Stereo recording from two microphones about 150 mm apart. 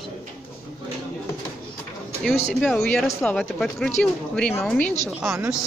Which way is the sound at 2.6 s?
5° left (ahead or behind).